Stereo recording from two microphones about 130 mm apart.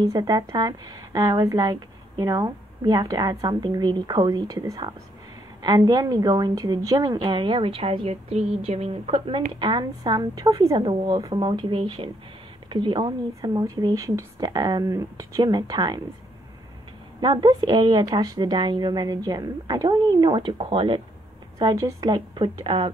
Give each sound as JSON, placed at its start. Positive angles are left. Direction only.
{"t": 0.0, "sound": "a woman's voice", "side_deg": -30}
{"t": 9.6, "sound": "a woman's voice", "side_deg": -35}
{"t": 13.3, "sound": "a woman's voice", "side_deg": -25}
{"t": 17.2, "sound": "a woman's voice", "side_deg": -35}
{"t": 21.5, "sound": "a woman's voice", "side_deg": -25}